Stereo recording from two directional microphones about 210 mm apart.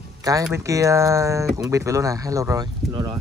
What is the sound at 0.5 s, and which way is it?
Speech, 15° right (ahead or behind).